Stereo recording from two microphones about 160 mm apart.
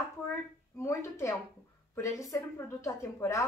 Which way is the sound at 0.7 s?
20° left (ahead or behind).